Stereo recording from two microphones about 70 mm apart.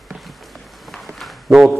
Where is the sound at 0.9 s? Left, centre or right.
Centre.